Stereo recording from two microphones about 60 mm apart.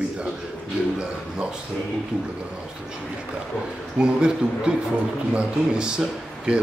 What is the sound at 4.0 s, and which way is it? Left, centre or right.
Speech, centre.